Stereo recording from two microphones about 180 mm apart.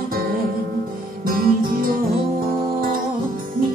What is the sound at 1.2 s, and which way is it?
Music, 50° right (ahead or behind).